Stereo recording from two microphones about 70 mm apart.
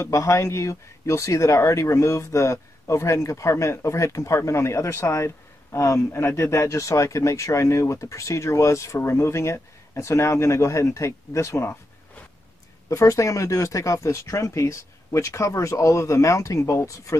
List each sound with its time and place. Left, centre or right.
0.0 s speech: left
12.9 s speech: left